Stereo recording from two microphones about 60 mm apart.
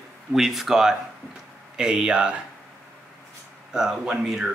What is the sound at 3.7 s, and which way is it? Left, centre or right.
Speech, centre.